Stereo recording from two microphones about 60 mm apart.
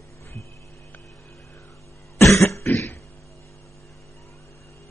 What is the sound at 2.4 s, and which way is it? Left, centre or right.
Cough, left.